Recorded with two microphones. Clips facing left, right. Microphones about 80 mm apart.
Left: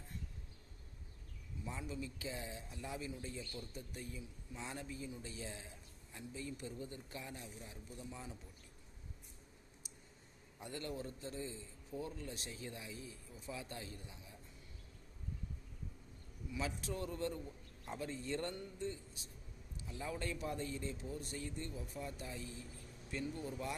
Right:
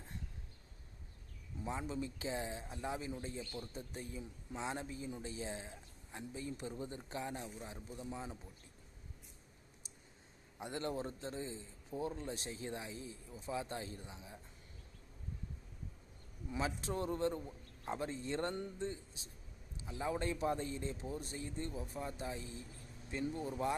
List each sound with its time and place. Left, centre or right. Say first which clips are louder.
1.6 s speech: right 5 dB; right
10.6 s speech: right 4 dB; right
16.4 s speech: right 3 dB; right